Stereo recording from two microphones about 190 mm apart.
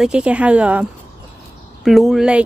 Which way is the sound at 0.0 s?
5° right (ahead or behind).